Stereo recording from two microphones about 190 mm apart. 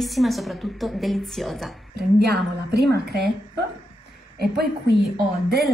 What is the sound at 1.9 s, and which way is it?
A woman's voice, 60° right (ahead or behind).